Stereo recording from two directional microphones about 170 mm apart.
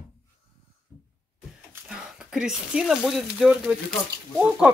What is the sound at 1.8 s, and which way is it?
Speech, 5° right (ahead or behind).